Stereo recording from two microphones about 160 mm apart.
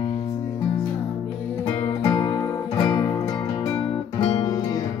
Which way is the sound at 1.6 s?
25° left (ahead or behind).